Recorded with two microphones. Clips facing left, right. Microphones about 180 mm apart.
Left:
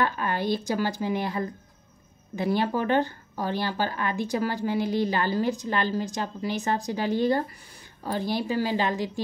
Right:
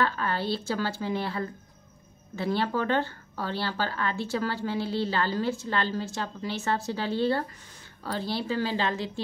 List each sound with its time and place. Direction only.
0.0 s speech: 15° left (ahead or behind)